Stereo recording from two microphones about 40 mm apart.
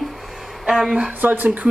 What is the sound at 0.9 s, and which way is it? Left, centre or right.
Speech, right.